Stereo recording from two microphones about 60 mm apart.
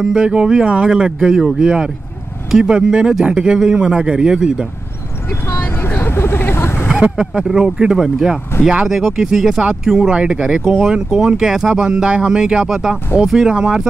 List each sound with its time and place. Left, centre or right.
0.0 s speech: centre
5.8 s vehicle: left
6.9 s speech: centre